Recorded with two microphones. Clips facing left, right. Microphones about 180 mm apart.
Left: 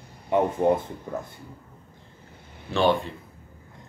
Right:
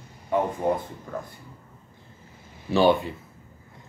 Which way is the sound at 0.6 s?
20° left (ahead or behind).